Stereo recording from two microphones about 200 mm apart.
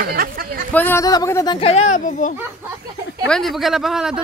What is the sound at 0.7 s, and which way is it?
A child's voice, 10° left (ahead or behind).